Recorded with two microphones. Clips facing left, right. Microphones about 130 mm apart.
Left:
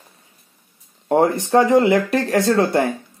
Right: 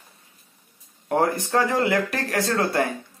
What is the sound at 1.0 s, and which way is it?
Speech, 25° left (ahead or behind).